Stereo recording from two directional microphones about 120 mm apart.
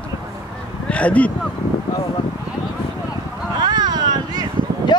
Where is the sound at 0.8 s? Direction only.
10° left (ahead or behind).